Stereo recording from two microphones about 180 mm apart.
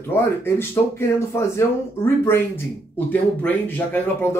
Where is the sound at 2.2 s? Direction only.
10° left (ahead or behind).